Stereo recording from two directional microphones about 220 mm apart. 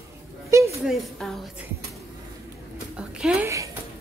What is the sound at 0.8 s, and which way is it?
Speech, centre (ahead or behind).